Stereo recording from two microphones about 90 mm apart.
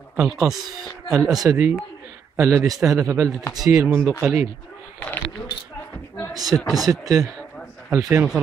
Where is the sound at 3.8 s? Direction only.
25° right (ahead or behind).